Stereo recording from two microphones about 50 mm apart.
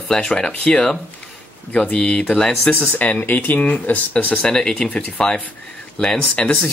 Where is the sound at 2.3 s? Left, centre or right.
Centre.